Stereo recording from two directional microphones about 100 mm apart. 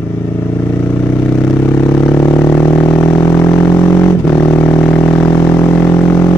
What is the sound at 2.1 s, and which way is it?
Vehicle, 30° left (ahead or behind).